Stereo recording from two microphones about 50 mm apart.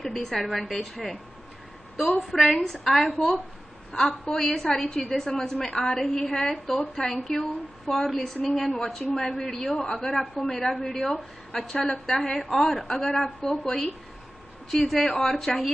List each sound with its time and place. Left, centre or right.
0.0 s a woman's voice: centre
10.3 s a man's voice: left
11.0 s a woman's voice: centre
11.5 s a woman's voice: centre